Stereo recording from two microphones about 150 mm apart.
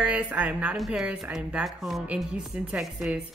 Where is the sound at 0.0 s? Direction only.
10° right (ahead or behind).